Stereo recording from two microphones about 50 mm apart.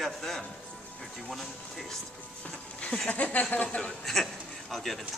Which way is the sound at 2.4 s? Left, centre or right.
Left.